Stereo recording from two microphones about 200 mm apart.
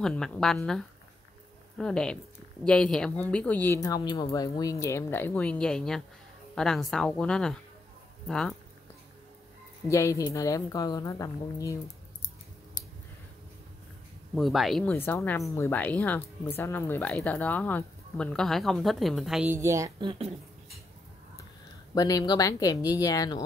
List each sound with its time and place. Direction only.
0.0 s speech: 5° left (ahead or behind)
9.8 s speech: 15° left (ahead or behind)
14.3 s speech: centre (ahead or behind); by 20.2 s 25° right (ahead or behind)
21.9 s a woman's voice: 20° left (ahead or behind)